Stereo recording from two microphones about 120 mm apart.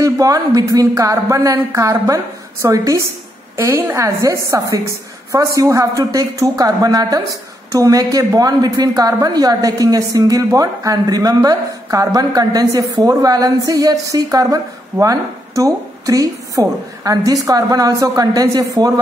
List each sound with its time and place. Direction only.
0.0 s a woman's voice: 30° right (ahead or behind)